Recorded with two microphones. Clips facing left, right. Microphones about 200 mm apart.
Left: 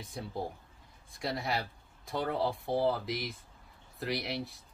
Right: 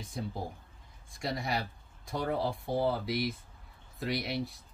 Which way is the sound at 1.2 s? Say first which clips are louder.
Even; centre (ahead or behind).